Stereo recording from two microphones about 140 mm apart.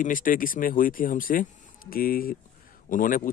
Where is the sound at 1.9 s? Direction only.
90° left.